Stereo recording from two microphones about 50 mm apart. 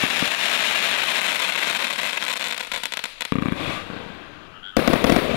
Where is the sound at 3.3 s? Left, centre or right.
Centre.